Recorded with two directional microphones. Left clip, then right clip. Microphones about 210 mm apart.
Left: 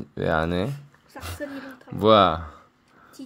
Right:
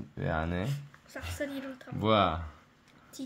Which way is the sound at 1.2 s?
40° left (ahead or behind).